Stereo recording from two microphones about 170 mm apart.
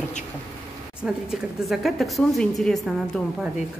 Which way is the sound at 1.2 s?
Centre (ahead or behind).